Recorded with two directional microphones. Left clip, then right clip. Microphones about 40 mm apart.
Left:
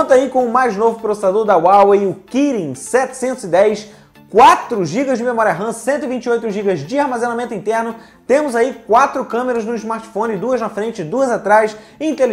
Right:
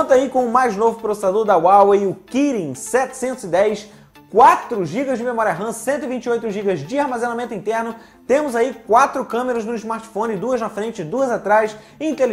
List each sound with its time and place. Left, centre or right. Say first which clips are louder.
0.0 s speech: left 3 dB; right
0.3 s speech: left 2 dB; right
3.3 s a woman's voice: left 4 dB; centre
4.4 s speech: left 3 dB; centre
5.7 s a woman's voice: left 3 dB; centre
8.3 s speech: left 3 dB; right
8.9 s speech: left 2 dB; right
11.1 s a woman's voice: left 4 dB; centre
12.0 s speech: left 3 dB; right